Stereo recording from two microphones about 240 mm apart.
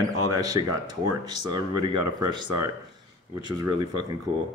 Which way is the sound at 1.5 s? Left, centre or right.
Centre.